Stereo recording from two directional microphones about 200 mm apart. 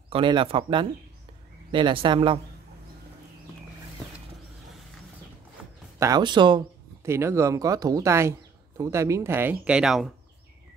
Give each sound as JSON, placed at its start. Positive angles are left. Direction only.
{"t": 0.1, "sound": "speech", "side_deg": -25}
{"t": 5.9, "sound": "speech", "side_deg": -20}